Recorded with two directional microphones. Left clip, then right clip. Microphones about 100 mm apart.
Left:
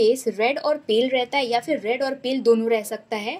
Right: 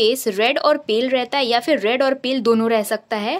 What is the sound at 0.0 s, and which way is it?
A woman's voice, 55° right (ahead or behind).